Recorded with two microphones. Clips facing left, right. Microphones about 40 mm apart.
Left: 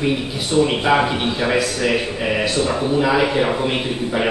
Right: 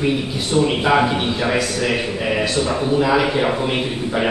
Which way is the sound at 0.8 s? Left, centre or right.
Centre.